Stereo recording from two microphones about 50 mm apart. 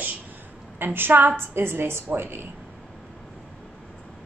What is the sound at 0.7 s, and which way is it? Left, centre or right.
A woman's voice, right.